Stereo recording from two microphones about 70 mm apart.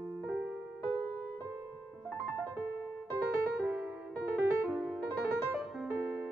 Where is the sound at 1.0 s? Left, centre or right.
Centre.